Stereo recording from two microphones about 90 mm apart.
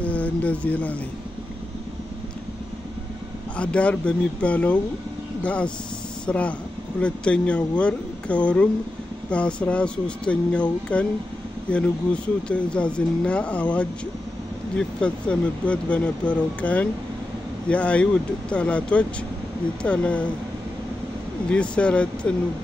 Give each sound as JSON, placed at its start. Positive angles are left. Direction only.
{"t": 0.0, "sound": "a sound", "side_deg": 15}
{"t": 3.5, "sound": "speech", "side_deg": 15}
{"t": 21.5, "sound": "speech", "side_deg": 10}